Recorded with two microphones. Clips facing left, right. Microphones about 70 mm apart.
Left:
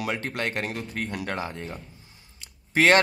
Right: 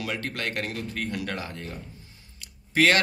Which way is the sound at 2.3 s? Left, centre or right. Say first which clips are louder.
Even; left.